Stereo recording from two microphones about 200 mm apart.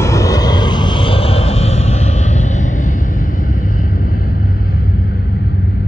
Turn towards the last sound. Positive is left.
turn(degrees=45)  # may be behind; listen again after turning